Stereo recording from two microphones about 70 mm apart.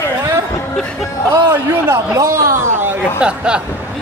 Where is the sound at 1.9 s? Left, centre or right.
Right.